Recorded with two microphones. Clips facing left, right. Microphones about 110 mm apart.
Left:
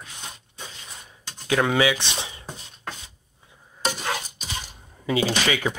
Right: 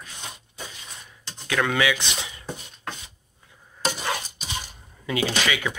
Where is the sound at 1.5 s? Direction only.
25° left (ahead or behind).